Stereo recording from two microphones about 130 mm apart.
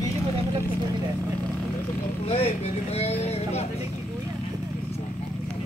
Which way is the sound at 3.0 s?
55° left (ahead or behind).